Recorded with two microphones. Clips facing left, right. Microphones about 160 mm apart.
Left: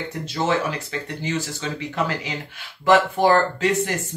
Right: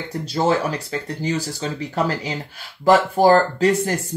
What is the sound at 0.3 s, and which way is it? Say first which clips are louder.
Speech: right 3 dB; 35° right (ahead or behind).